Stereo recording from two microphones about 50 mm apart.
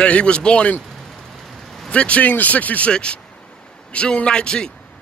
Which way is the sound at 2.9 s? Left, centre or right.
Centre.